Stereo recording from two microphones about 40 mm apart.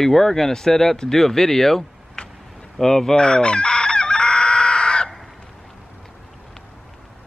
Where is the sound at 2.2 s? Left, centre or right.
Centre.